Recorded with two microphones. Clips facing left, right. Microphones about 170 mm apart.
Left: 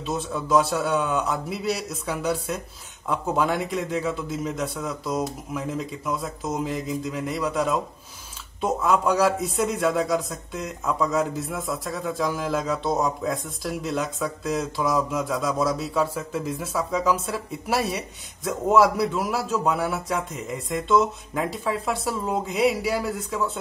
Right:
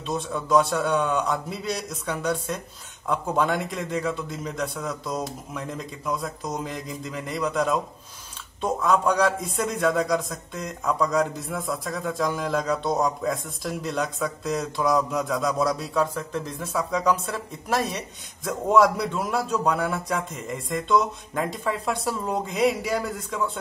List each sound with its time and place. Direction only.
0.0 s a man's voice: 5° left (ahead or behind)